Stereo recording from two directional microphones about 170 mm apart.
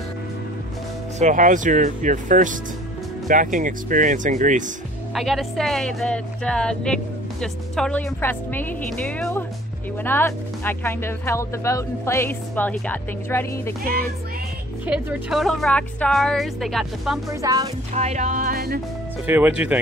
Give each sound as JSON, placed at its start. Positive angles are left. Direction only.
{"t": 1.2, "sound": "speech", "side_deg": -50}
{"t": 5.1, "sound": "speech", "side_deg": 0}
{"t": 14.9, "sound": "speech", "side_deg": -5}
{"t": 17.3, "sound": "speech", "side_deg": -20}
{"t": 17.9, "sound": "speech", "side_deg": -40}
{"t": 19.2, "sound": "speech", "side_deg": -10}